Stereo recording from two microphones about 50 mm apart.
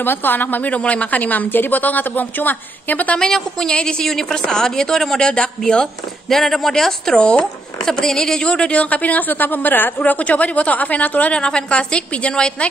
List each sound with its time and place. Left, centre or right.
0.0 s a woman's voice: left
3.2 s a woman's voice: centre; by 11.3 s left
11.3 s a woman's voice: centre